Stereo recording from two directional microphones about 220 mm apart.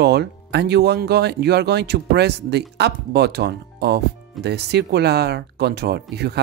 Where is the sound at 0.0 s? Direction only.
50° right (ahead or behind).